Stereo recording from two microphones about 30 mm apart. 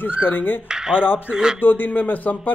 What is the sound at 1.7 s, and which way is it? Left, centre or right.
Speech, left.